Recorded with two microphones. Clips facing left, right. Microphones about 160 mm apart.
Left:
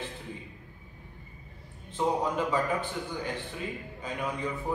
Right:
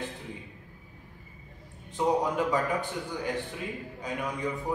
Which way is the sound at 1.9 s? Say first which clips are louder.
Right 2 dB; 15° right (ahead or behind).